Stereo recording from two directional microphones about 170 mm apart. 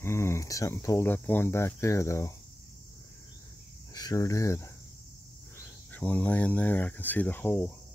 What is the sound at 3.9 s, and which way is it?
Speech, 20° left (ahead or behind).